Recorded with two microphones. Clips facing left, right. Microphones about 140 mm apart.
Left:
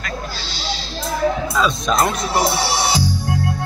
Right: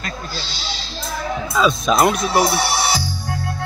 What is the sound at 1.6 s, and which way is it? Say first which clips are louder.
Speech: right 3 dB; 5° right (ahead or behind).